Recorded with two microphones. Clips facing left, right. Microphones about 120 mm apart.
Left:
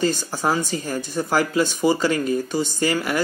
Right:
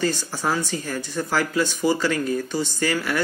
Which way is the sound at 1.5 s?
15° left (ahead or behind).